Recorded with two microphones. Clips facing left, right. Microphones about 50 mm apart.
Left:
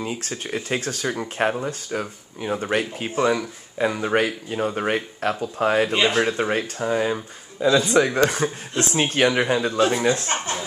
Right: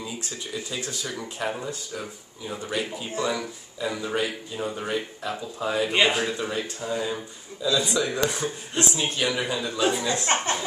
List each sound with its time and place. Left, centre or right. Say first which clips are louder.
0.0 s speech: left 6 dB; left
5.9 s speech: left 1 dB; centre
6.1 s speech: left 6 dB; left